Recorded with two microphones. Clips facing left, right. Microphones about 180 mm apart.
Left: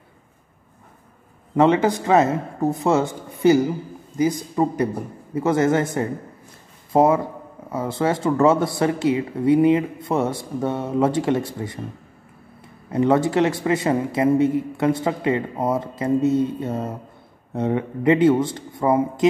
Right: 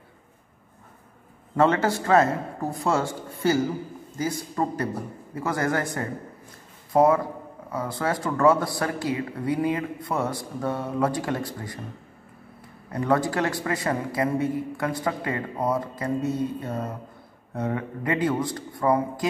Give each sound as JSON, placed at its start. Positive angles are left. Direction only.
{"t": 1.5, "sound": "a man's voice", "side_deg": 15}
{"t": 12.9, "sound": "speech", "side_deg": 25}